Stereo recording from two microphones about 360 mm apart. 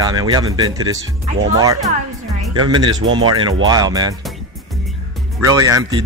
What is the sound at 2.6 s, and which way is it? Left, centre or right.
Speech, centre.